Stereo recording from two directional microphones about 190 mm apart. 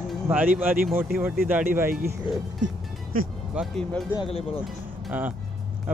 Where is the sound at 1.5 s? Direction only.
10° right (ahead or behind).